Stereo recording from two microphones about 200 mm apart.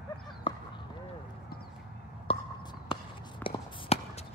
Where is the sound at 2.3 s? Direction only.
25° left (ahead or behind).